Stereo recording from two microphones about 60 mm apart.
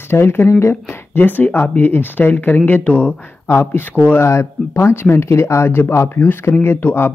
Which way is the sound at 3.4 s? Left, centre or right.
Left.